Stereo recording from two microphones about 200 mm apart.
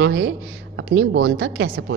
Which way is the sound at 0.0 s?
70° right (ahead or behind).